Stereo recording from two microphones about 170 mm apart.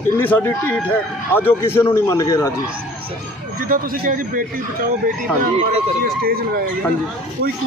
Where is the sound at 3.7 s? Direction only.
60° right (ahead or behind).